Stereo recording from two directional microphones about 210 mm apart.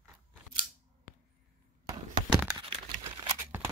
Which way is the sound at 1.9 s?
15° right (ahead or behind).